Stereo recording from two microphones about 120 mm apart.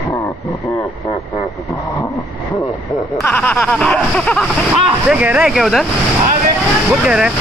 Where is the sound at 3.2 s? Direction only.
15° left (ahead or behind).